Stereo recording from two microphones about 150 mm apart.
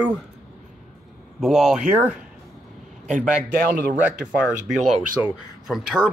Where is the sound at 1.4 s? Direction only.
Centre (ahead or behind).